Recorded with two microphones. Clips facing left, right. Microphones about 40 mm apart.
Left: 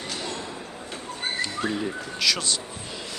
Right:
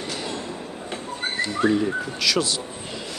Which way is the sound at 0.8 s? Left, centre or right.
Centre.